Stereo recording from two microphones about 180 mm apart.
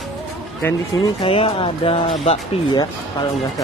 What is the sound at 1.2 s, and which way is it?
Speech, 30° left (ahead or behind).